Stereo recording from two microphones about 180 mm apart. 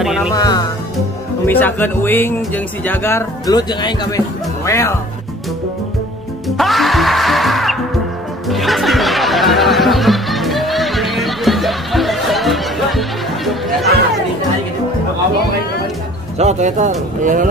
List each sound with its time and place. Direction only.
0.0 s speech: centre (ahead or behind)
0.3 s speech: 20° left (ahead or behind)
6.5 s music: centre (ahead or behind)
16.3 s speech: 40° right (ahead or behind)